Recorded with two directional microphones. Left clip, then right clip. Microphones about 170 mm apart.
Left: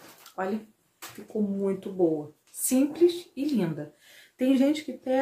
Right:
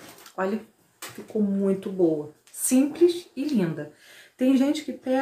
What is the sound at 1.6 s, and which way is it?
Speech, 5° left (ahead or behind).